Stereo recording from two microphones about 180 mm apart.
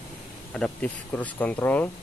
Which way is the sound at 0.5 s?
5° left (ahead or behind).